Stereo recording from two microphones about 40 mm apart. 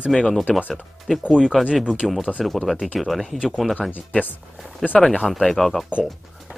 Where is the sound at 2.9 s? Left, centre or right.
Centre.